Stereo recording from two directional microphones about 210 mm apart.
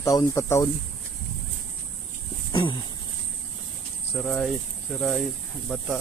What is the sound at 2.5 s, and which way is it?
Dog, 20° left (ahead or behind).